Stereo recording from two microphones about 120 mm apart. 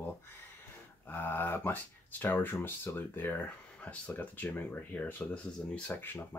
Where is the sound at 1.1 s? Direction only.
15° left (ahead or behind).